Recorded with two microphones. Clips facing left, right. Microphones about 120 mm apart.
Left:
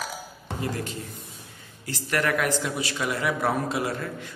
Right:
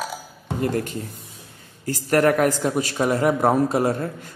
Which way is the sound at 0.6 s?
50° right (ahead or behind).